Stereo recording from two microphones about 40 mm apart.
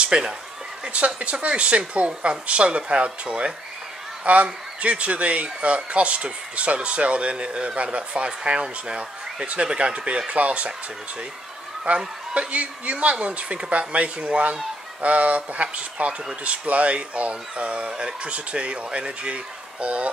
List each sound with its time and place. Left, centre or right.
0.0 s a sound: right
0.8 s a man's voice: right
11.9 s a man's voice: right